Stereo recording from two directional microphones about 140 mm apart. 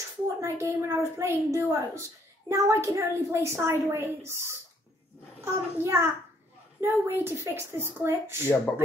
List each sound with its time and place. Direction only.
0.4 s a woman's voice: 20° right (ahead or behind)